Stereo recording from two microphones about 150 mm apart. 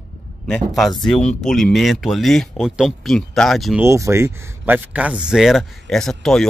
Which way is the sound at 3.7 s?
20° right (ahead or behind).